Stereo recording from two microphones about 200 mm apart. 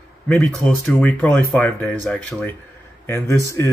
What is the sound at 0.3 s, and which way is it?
Speech, 5° left (ahead or behind).